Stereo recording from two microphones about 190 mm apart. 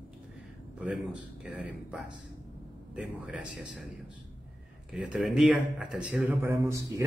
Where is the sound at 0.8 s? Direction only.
5° right (ahead or behind).